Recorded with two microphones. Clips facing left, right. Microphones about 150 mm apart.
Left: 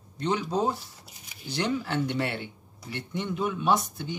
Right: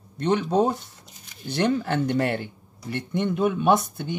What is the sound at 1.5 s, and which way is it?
Speech, 55° right (ahead or behind).